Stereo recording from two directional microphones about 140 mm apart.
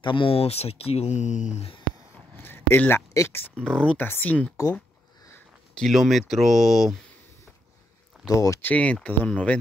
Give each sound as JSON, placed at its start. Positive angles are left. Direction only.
{"t": 0.0, "sound": "speech", "side_deg": 35}
{"t": 2.3, "sound": "a sound", "side_deg": 15}
{"t": 3.6, "sound": "speech", "side_deg": 5}
{"t": 5.8, "sound": "speech", "side_deg": 0}
{"t": 8.3, "sound": "speech", "side_deg": 20}